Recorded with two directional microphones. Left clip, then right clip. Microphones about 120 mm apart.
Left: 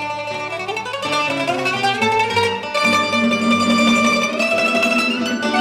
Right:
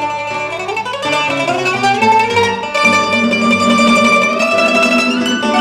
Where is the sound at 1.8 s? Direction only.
30° left (ahead or behind).